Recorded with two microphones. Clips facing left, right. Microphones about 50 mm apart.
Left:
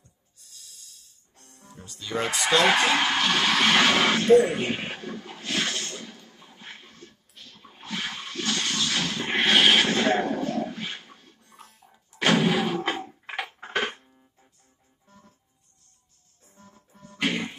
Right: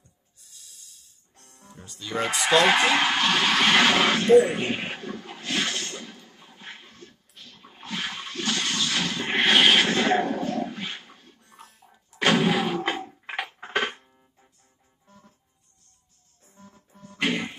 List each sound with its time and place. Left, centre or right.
0.4 s music: centre
8.9 s a sound: centre
16.5 s music: centre